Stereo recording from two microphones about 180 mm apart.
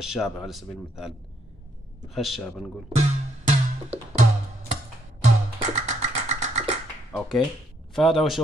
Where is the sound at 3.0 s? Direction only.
40° right (ahead or behind).